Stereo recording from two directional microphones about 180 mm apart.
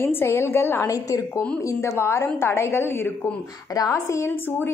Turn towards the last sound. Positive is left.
turn(degrees=10)  # may be behind; listen again after turning